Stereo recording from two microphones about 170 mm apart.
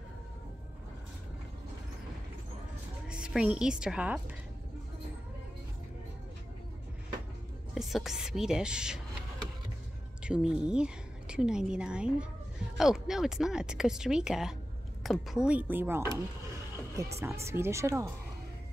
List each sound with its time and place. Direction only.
3.1 s a woman's voice: 5° right (ahead or behind)
7.7 s speech: centre (ahead or behind)
10.2 s a woman's voice: 5° right (ahead or behind)